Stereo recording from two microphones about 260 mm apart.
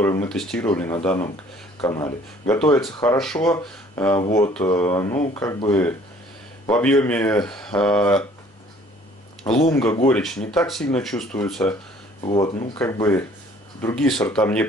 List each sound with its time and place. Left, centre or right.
0.0 s speech: centre
9.7 s speech: centre
12.2 s speech: centre